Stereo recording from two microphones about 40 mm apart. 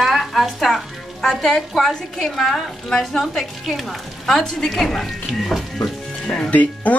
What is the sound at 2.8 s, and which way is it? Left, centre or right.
A woman's voice, centre.